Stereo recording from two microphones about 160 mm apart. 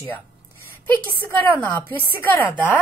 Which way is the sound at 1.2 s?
10° left (ahead or behind).